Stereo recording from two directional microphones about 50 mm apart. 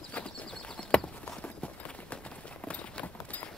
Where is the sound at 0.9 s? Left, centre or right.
Left.